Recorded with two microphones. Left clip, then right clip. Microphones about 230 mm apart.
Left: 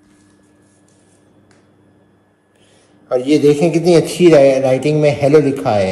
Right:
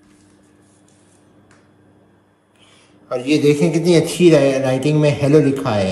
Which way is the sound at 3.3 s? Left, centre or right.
Centre.